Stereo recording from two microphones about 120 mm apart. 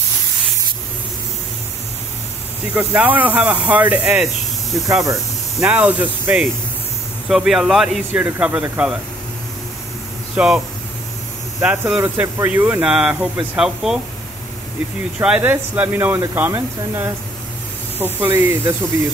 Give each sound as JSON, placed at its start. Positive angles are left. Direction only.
{"t": 2.7, "sound": "speech", "side_deg": -10}
{"t": 5.6, "sound": "speech", "side_deg": -10}
{"t": 7.2, "sound": "speech", "side_deg": -5}
{"t": 10.3, "sound": "speech", "side_deg": -5}
{"t": 11.6, "sound": "speech", "side_deg": -15}
{"t": 15.1, "sound": "speech", "side_deg": -10}